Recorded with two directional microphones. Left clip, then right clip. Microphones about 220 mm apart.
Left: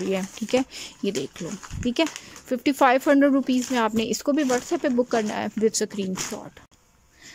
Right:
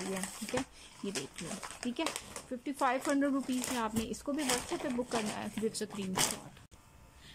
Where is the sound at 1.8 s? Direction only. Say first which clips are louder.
Left 13 dB; 25° right (ahead or behind).